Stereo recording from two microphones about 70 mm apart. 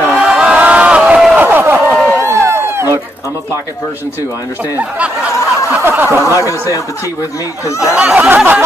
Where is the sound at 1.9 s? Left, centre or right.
Centre.